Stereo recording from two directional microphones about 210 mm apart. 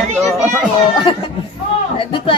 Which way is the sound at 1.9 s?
25° left (ahead or behind).